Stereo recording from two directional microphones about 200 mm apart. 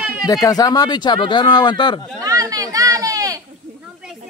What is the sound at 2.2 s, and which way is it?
Children playing, 15° right (ahead or behind).